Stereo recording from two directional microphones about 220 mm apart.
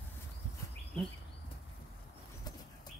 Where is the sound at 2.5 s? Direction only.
15° left (ahead or behind).